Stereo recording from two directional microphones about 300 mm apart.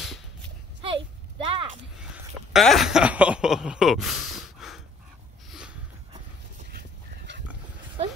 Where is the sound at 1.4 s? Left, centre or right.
Centre.